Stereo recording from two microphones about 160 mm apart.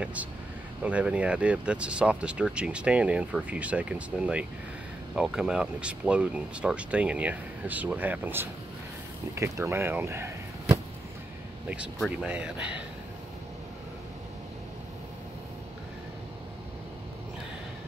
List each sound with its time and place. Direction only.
0.0 s speech: 10° right (ahead or behind)
12.3 s speech: 5° right (ahead or behind)